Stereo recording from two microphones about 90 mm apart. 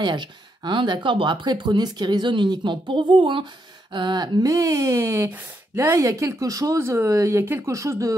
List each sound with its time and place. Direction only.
0.0 s speech: 60° right (ahead or behind)
3.9 s speech: 55° right (ahead or behind); by 6.8 s 40° right (ahead or behind)
6.8 s speech: 30° right (ahead or behind)